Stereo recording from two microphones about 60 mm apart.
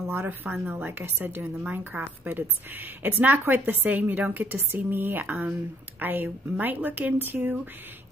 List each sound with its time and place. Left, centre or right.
0.1 s a woman's voice: right